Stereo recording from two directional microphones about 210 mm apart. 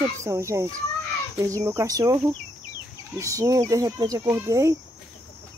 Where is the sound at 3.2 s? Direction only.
15° right (ahead or behind).